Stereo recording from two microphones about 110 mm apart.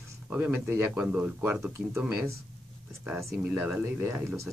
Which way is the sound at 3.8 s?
20° right (ahead or behind).